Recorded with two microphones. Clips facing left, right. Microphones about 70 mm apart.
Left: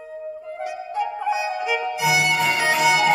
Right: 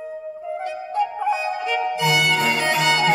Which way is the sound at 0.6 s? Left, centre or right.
Centre.